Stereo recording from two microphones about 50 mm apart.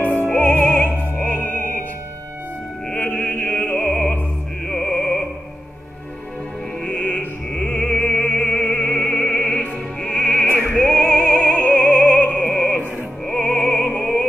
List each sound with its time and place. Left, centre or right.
0.3 s opera: left
3.1 s opera: left
4.6 s music: centre
6.8 s music: left
7.9 s music: left
10.7 s opera: left
12.4 s opera: centre
13.3 s music: left